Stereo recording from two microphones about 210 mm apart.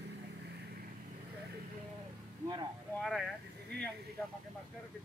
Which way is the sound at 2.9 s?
Centre (ahead or behind).